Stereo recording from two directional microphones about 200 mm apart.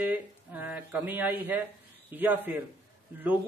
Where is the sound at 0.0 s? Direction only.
10° right (ahead or behind).